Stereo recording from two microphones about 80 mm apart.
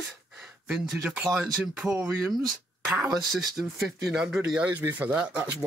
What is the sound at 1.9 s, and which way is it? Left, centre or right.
Speech, right.